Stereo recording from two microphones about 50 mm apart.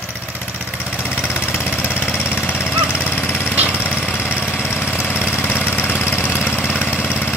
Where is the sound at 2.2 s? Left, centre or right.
Left.